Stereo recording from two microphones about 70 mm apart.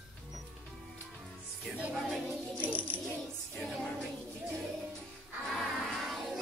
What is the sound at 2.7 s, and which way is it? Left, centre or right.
Coin, right.